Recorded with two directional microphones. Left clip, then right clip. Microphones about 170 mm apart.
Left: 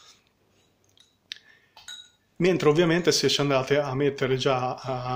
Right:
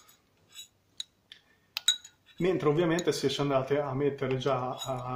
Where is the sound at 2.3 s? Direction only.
20° left (ahead or behind).